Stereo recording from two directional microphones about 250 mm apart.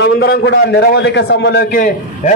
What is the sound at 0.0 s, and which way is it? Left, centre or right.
A man's voice, left.